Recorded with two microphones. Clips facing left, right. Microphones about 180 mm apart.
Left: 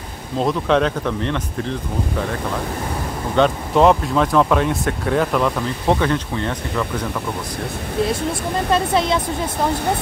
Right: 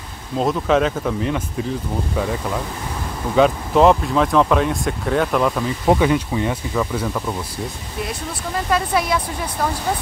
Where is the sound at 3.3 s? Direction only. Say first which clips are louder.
Right 1 dB; centre (ahead or behind).